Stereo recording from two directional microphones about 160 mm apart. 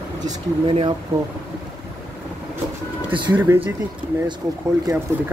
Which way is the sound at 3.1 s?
30° right (ahead or behind).